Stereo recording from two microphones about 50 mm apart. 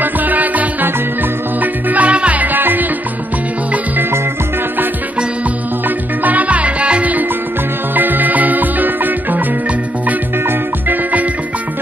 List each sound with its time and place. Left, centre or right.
0.0 s music: right
5.9 s music: right
10.9 s music: right